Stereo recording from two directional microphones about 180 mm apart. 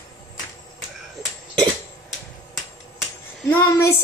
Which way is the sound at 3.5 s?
15° left (ahead or behind).